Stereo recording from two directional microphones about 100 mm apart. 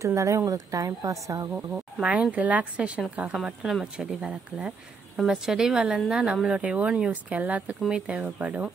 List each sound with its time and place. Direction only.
0.0 s a woman's voice: 30° right (ahead or behind)
2.0 s speech: 10° right (ahead or behind)